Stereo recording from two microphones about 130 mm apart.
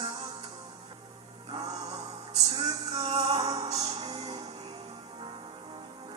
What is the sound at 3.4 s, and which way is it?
Music, 30° right (ahead or behind).